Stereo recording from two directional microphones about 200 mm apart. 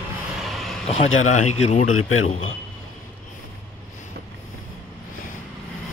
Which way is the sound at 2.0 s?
90° left.